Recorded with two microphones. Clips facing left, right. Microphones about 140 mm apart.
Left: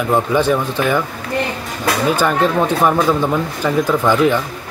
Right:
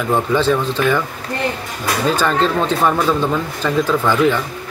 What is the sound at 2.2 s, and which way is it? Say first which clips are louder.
Speech: left 1 dB; 10° left (ahead or behind).